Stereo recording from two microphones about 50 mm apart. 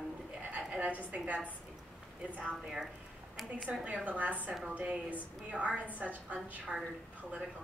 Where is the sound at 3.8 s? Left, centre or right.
Right.